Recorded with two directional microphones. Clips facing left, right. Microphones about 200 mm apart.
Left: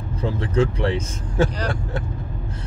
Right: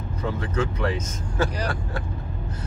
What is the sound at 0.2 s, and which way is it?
Speech, 30° left (ahead or behind).